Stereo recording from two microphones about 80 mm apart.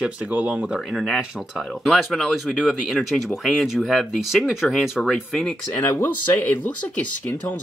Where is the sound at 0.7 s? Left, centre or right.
Centre.